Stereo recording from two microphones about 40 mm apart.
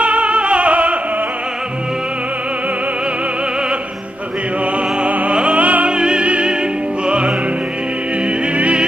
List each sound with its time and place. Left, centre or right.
0.0 s music: right
5.0 s opera: right
5.9 s opera: right
6.2 s opera: right
7.1 s music: right
8.5 s music: right